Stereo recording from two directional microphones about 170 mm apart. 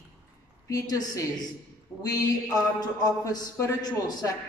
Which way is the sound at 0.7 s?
20° left (ahead or behind).